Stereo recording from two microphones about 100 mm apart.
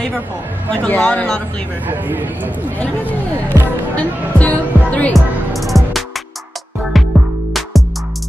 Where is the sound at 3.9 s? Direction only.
15° left (ahead or behind).